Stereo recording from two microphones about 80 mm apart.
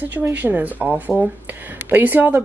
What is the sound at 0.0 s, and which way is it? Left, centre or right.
Speech, right.